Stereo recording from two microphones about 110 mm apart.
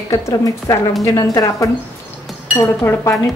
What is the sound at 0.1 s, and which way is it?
A woman's voice, 30° left (ahead or behind).